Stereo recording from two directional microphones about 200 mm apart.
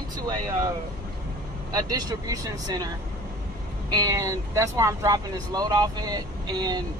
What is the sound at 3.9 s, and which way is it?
Speech, 15° right (ahead or behind).